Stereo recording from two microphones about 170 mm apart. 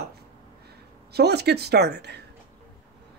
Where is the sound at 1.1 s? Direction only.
75° right (ahead or behind).